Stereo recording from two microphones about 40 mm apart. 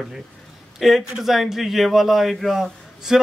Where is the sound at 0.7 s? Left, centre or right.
Centre.